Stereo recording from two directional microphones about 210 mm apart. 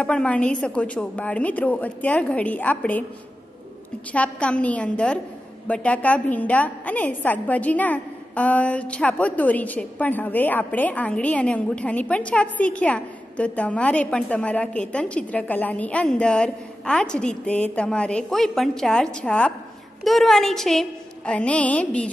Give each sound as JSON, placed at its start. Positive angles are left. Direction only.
{"t": 0.0, "sound": "a woman's voice", "side_deg": 5}
{"t": 4.1, "sound": "a woman's voice", "side_deg": 5}